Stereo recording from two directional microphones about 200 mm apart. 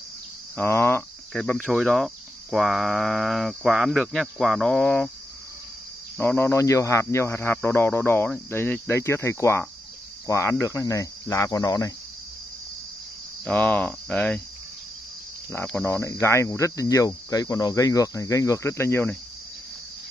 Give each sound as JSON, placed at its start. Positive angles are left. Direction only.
{"t": 0.6, "sound": "speech", "side_deg": 10}
{"t": 6.1, "sound": "speech", "side_deg": 10}
{"t": 13.5, "sound": "speech", "side_deg": 5}
{"t": 15.5, "sound": "speech", "side_deg": 10}